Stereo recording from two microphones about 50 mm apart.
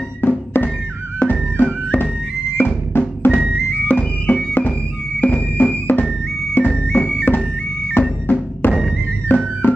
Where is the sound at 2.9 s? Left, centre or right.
Left.